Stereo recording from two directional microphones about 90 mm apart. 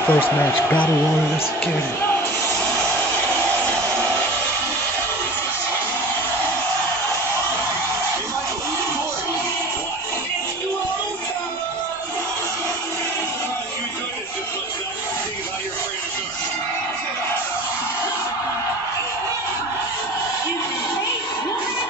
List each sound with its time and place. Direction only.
0.0 s a man's voice: 20° left (ahead or behind)